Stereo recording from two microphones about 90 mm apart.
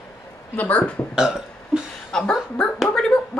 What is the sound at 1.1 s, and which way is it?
Burping, 5° right (ahead or behind).